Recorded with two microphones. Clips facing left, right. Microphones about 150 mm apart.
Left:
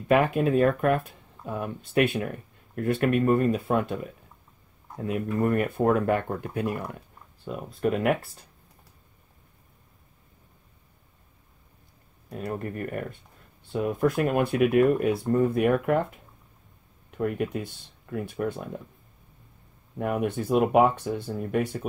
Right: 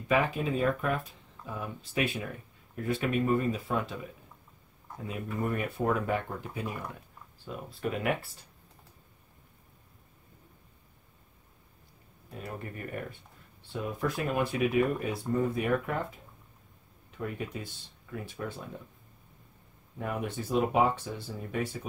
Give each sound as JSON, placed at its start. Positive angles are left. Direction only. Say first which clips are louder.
{"t": 0.1, "sound": "speech", "louder": "left 7 dB", "side_deg": 60}
{"t": 12.3, "sound": "speech", "louder": "left 8 dB", "side_deg": 45}
{"t": 17.1, "sound": "speech", "louder": "left 9 dB", "side_deg": 60}
{"t": 20.0, "sound": "speech", "louder": "left 7 dB", "side_deg": 60}